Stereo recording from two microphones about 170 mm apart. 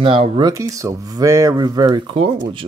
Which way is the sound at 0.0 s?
30° right (ahead or behind).